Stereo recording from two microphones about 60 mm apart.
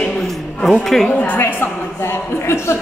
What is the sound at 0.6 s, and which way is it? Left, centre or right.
Speech, centre.